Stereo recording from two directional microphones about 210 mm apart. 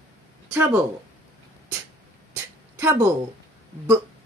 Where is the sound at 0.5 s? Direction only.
10° right (ahead or behind).